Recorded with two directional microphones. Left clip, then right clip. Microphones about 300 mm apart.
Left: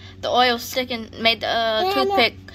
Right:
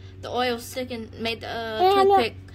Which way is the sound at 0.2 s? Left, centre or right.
Centre.